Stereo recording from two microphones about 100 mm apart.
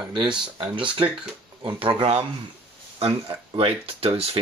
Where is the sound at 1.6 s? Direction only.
60° right (ahead or behind); by 2.2 s 80° right.